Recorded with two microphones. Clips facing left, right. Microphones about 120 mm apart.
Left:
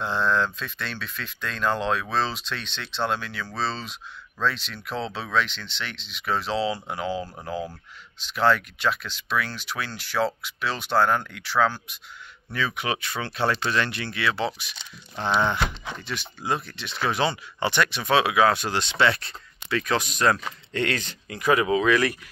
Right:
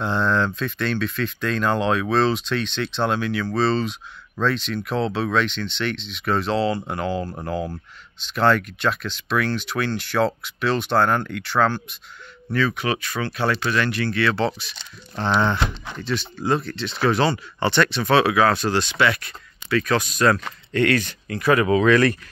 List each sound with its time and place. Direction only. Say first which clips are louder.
0.0 s a sound: right 3 dB; centre (ahead or behind)
0.6 s speech: right 10 dB; centre (ahead or behind)
12.5 s speech: right 5 dB; 15° left (ahead or behind)